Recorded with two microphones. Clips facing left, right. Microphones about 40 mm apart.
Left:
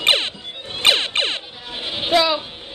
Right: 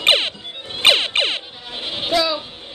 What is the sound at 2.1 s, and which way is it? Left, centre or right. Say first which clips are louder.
Music: left 2 dB; left.